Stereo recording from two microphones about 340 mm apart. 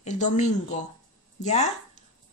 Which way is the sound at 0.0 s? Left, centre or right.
Left.